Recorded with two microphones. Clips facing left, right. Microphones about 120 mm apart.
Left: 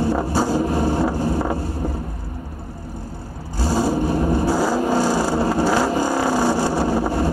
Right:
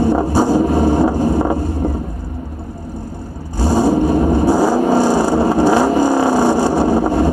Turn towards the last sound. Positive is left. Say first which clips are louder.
# right 6 dB
turn(degrees=-15)  # may be behind; listen again after turning